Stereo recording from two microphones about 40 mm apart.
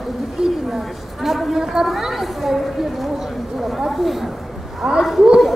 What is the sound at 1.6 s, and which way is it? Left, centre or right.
A woman's voice, centre.